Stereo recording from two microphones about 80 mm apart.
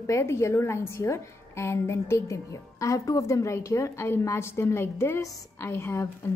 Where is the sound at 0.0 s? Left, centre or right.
Left.